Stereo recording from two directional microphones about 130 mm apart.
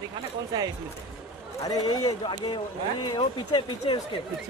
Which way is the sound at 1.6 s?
30° left (ahead or behind).